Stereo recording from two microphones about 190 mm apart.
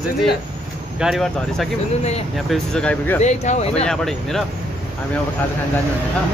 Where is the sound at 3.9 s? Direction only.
Centre (ahead or behind).